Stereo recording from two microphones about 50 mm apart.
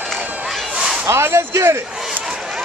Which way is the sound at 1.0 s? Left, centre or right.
Right.